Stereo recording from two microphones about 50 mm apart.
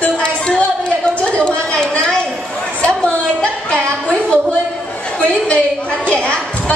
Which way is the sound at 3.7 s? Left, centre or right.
Centre.